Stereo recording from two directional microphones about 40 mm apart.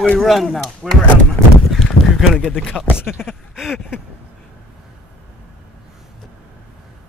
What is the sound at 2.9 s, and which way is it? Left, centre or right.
Speech, left.